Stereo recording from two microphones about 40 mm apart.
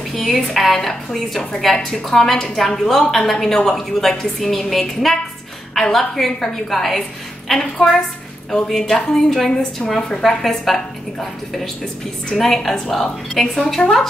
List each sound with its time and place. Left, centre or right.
0.1 s a woman's voice: centre
9.5 s a woman's voice: centre
10.2 s a woman's voice: centre